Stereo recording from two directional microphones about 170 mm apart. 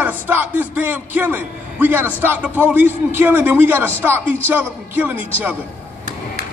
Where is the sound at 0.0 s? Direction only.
10° right (ahead or behind).